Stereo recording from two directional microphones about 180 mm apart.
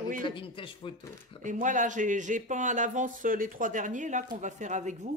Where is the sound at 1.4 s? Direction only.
45° right (ahead or behind).